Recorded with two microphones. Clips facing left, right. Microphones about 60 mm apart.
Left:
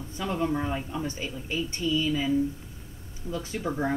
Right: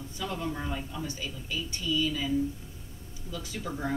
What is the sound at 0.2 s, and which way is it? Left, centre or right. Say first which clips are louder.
Speech: left 6 dB; left.